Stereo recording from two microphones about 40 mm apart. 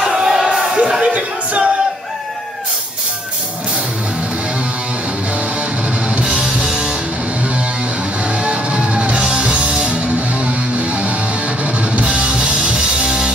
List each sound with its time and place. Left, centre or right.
0.0 s a sound: centre
1.0 s music: right
6.3 s music: right
8.4 s music: right